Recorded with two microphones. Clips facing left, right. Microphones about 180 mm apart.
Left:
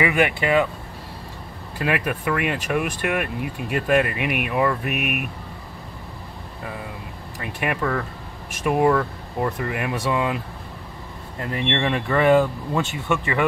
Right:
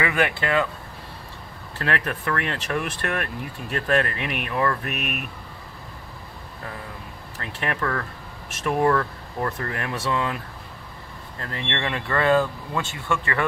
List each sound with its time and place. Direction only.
0.0 s speech: 15° left (ahead or behind)
1.8 s speech: 10° left (ahead or behind)
7.3 s speech: 10° left (ahead or behind)